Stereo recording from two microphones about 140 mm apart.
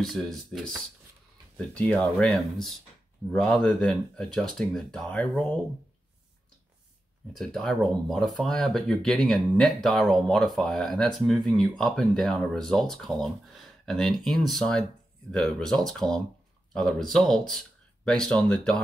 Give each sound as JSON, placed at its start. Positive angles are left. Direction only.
{"t": 0.0, "sound": "speech", "side_deg": 0}
{"t": 1.7, "sound": "speech", "side_deg": 10}
{"t": 7.3, "sound": "speech", "side_deg": 5}